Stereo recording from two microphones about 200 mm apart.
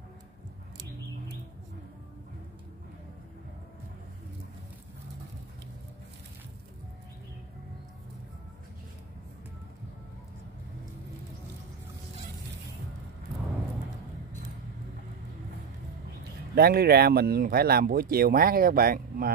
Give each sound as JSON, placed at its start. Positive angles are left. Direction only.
{"t": 16.5, "sound": "speech", "side_deg": -50}